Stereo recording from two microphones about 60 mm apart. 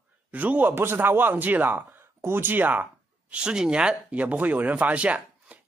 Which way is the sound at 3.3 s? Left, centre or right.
Centre.